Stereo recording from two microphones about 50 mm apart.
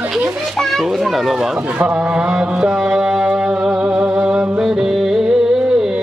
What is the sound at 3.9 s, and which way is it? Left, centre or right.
Music, centre.